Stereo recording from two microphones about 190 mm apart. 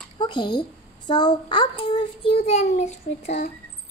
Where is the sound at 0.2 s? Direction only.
25° left (ahead or behind).